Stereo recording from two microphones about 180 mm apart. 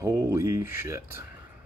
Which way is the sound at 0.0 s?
15° right (ahead or behind).